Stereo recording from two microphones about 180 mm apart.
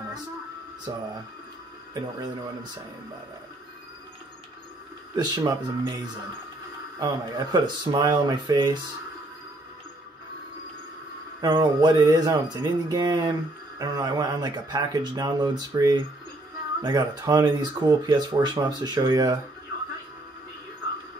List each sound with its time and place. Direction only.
0.9 s speech: 20° right (ahead or behind)
5.1 s speech: 25° right (ahead or behind)
7.0 s speech: 25° right (ahead or behind)
11.4 s speech: 20° right (ahead or behind)